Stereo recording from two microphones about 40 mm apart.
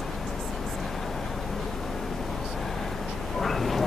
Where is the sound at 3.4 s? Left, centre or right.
Centre.